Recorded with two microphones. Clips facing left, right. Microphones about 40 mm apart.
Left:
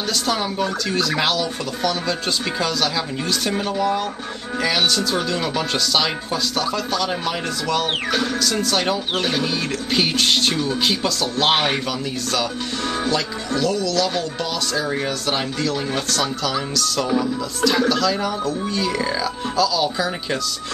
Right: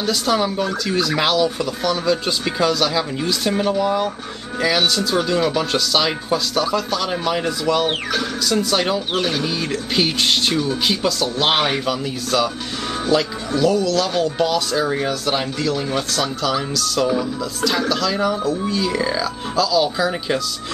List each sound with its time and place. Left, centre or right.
0.0 s speech: centre
13.0 s speech: centre